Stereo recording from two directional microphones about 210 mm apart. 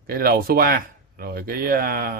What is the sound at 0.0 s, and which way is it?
Speech, 45° right (ahead or behind).